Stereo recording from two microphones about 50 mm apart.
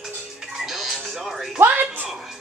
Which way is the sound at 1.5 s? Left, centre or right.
Right.